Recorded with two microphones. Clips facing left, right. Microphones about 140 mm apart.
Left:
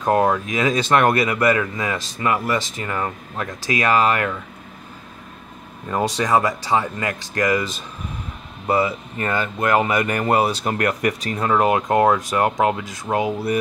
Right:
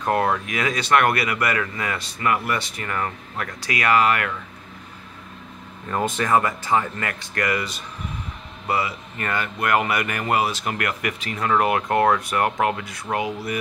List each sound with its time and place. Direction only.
0.0 s speech: 15° left (ahead or behind)
0.5 s speech: 25° left (ahead or behind)
3.6 s speech: 30° left (ahead or behind)
6.1 s speech: 15° left (ahead or behind)
8.6 s speech: 25° left (ahead or behind)